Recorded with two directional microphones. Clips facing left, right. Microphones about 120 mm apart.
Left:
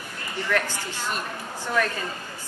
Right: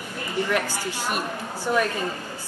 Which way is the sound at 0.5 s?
10° right (ahead or behind).